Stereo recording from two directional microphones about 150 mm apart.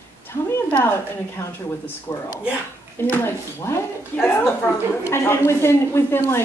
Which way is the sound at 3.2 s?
15° left (ahead or behind).